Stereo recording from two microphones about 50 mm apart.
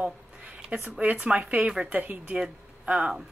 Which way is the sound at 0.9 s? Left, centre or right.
Right.